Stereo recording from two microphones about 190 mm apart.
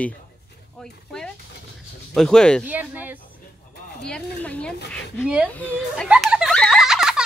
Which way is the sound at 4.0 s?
5° left (ahead or behind).